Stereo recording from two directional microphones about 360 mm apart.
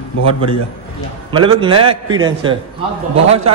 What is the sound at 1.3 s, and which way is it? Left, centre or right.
A man's voice, centre.